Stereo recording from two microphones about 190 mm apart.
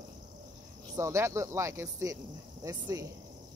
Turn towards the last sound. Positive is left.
turn(degrees=-15)  # may be behind; listen again after turning